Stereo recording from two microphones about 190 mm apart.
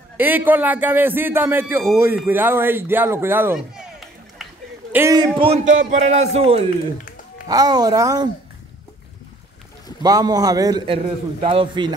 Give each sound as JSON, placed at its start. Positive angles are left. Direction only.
{"t": 0.2, "sound": "a man's voice", "side_deg": -10}
{"t": 4.9, "sound": "a man's voice", "side_deg": -20}
{"t": 5.9, "sound": "music", "side_deg": -40}
{"t": 7.4, "sound": "a man's voice", "side_deg": -20}
{"t": 10.0, "sound": "a man's voice", "side_deg": -20}